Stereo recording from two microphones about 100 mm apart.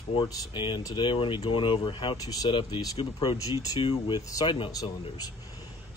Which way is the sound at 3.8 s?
50° left (ahead or behind).